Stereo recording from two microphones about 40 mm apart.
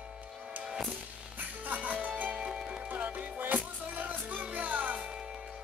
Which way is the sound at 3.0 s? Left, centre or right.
Right.